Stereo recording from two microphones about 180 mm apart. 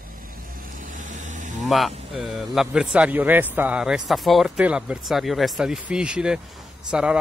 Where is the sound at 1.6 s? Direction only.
Centre (ahead or behind).